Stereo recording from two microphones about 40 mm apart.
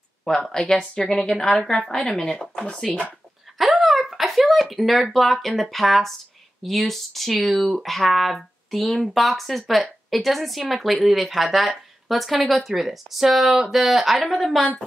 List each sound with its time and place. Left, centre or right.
0.5 s a woman's voice: centre
3.5 s a sound: centre
5.6 s speech: centre